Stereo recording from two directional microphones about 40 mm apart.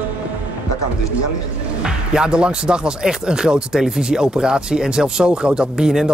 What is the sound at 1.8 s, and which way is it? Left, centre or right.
Speech, centre.